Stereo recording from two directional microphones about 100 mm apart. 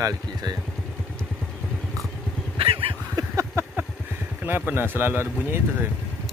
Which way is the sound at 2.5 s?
65° right (ahead or behind).